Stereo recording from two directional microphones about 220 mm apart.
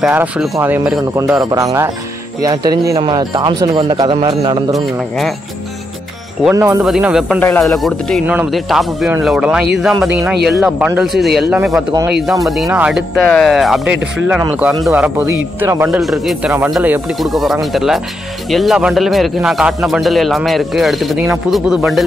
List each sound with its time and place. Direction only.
0.0 s a man's voice: 5° right (ahead or behind); by 4.7 s 20° right (ahead or behind)
4.7 s a man's voice: centre (ahead or behind)
6.5 s speech: 15° right (ahead or behind)
6.8 s a man's voice: 5° right (ahead or behind)
7.3 s a man's voice: 10° left (ahead or behind)